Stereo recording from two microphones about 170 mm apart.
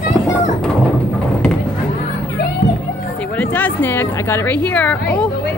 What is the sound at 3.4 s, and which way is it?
A woman's voice, 10° left (ahead or behind).